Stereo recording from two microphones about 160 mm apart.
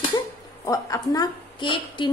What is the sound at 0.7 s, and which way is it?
Speech, 20° left (ahead or behind).